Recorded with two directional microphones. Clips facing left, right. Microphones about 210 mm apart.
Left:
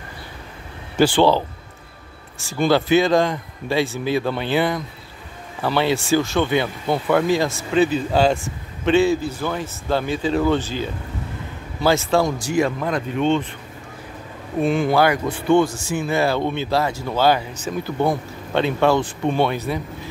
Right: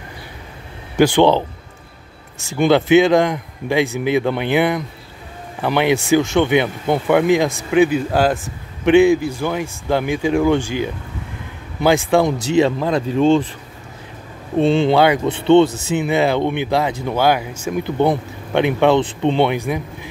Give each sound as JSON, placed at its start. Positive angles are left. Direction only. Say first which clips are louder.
{"t": 0.9, "sound": "speech", "louder": "right 3 dB", "side_deg": -20}
{"t": 2.4, "sound": "speech", "louder": "right 3 dB", "side_deg": -20}
{"t": 14.6, "sound": "speech", "louder": "right 4 dB", "side_deg": -25}
{"t": 17.8, "sound": "speech", "louder": "right 4 dB", "side_deg": -20}